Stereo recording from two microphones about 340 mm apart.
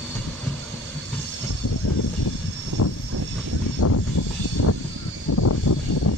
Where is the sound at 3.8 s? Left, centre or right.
Left.